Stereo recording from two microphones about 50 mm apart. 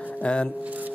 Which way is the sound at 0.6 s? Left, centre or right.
Right.